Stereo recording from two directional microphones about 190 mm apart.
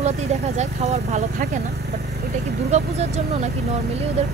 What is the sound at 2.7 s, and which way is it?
Speech, 35° right (ahead or behind).